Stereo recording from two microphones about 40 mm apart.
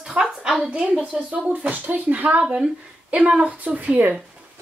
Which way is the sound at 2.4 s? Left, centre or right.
Right.